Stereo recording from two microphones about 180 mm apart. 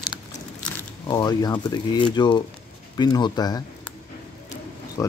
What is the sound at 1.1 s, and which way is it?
Speech, 20° left (ahead or behind).